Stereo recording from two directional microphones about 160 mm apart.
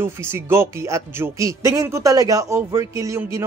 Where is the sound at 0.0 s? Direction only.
15° right (ahead or behind).